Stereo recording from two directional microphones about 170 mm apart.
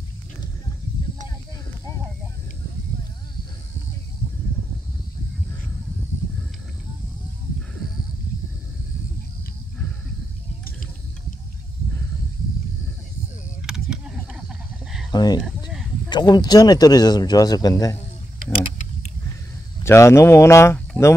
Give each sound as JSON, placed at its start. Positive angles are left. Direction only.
{"t": 10.6, "sound": "a sound", "side_deg": 55}
{"t": 13.6, "sound": "vehicle", "side_deg": -5}
{"t": 15.0, "sound": "speech", "side_deg": 25}
{"t": 19.8, "sound": "speech", "side_deg": 15}